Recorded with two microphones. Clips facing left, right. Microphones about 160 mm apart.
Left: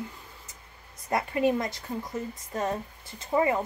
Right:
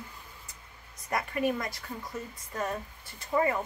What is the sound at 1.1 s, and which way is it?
Speech, 25° left (ahead or behind).